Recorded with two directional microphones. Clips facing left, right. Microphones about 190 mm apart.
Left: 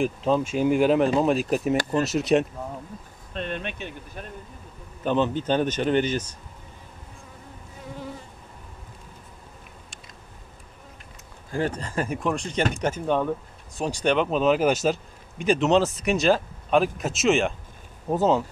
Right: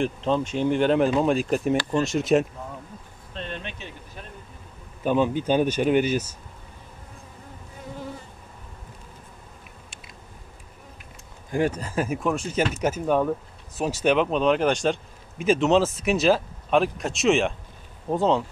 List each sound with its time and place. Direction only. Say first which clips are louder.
0.0 s speech: left 1 dB; 5° left (ahead or behind)
3.3 s a sound: left 4 dB; 55° left (ahead or behind)
5.0 s speech: right 1 dB; 10° right (ahead or behind)
11.5 s speech: right 2 dB; 10° right (ahead or behind)